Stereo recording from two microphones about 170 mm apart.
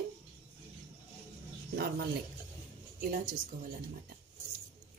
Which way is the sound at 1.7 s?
70° right (ahead or behind).